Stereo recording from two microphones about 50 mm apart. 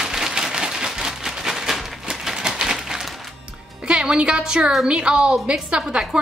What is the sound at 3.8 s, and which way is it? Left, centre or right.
A woman's voice, centre.